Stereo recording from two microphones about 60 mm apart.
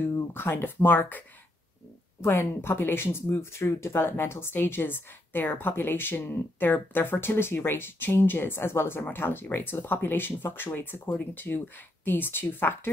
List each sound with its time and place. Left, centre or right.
0.1 s speech: left
2.2 s speech: left